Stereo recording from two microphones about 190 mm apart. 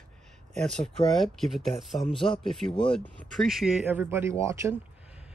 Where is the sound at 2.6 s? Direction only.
25° left (ahead or behind).